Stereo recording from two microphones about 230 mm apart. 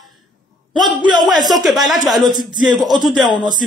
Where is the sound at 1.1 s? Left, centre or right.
Centre.